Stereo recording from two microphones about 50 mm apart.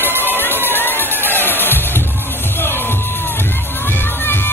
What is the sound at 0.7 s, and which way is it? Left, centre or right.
Crowd, left.